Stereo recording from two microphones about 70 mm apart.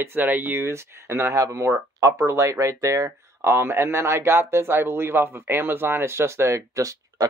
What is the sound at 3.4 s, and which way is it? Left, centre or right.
Speech, right.